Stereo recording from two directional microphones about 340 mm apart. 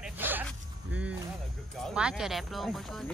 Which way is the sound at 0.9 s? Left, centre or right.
Centre.